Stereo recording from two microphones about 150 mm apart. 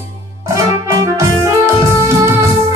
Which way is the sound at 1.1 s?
20° right (ahead or behind).